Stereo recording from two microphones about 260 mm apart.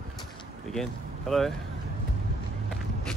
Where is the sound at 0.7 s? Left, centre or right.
Centre.